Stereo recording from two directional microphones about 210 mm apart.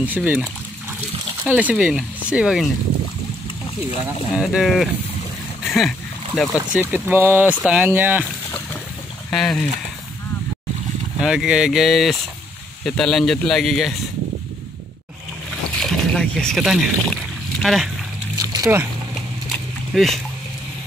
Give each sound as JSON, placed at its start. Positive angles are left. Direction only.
{"t": 0.0, "sound": "speech", "side_deg": -10}
{"t": 1.6, "sound": "speech", "side_deg": -5}
{"t": 4.3, "sound": "speech", "side_deg": 0}
{"t": 5.7, "sound": "a sound", "side_deg": 0}
{"t": 6.7, "sound": "speech", "side_deg": -10}
{"t": 9.3, "sound": "speech", "side_deg": 0}
{"t": 11.1, "sound": "speech", "side_deg": -5}
{"t": 15.8, "sound": "boat", "side_deg": 0}
{"t": 18.4, "sound": "a sound", "side_deg": -15}
{"t": 19.9, "sound": "speech", "side_deg": 0}